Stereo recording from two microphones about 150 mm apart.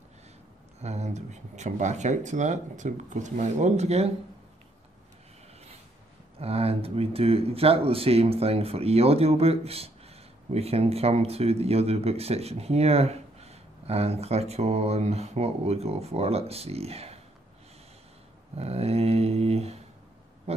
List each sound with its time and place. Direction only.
0.7 s speech: 45° right (ahead or behind)
6.4 s speech: 40° right (ahead or behind)
18.6 s speech: 45° right (ahead or behind)
20.5 s a sound: 45° right (ahead or behind)